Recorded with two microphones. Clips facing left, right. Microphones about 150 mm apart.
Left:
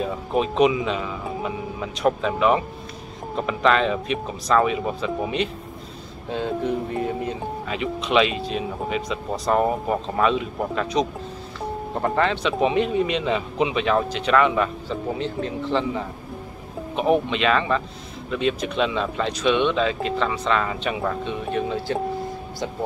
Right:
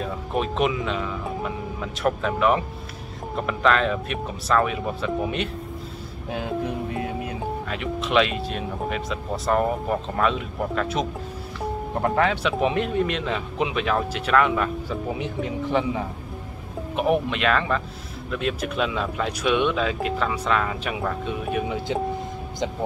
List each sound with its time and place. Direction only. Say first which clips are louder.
0.0 s speech: left 3 dB; centre (ahead or behind)
15.1 s a man's voice: left 1 dB; 15° right (ahead or behind)